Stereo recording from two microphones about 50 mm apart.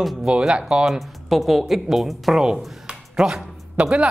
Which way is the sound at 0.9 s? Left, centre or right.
Centre.